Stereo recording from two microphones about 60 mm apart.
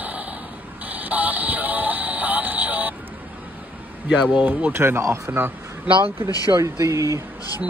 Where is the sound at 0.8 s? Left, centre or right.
Right.